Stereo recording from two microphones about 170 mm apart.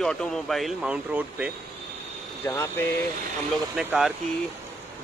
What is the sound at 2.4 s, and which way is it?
Speech, 15° left (ahead or behind).